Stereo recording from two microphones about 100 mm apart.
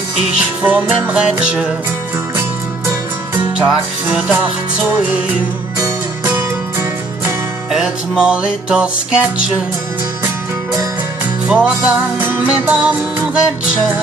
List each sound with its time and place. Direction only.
0.6 s music: 15° right (ahead or behind)
3.3 s music: 10° right (ahead or behind)
6.2 s music: 20° right (ahead or behind)
7.7 s music: 5° right (ahead or behind)
11.4 s music: 10° right (ahead or behind)